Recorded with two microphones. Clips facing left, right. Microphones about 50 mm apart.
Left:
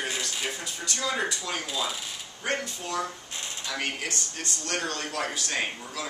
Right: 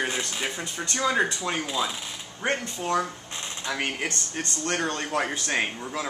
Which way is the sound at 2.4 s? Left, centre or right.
Right.